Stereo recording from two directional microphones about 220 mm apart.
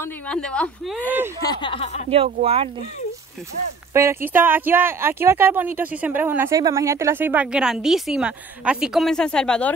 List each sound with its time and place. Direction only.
0.0 s speech: 5° left (ahead or behind)
1.4 s speech: 20° left (ahead or behind)
2.0 s speech: 25° right (ahead or behind)
3.9 s speech: 10° right (ahead or behind); by 9.8 s 5° left (ahead or behind)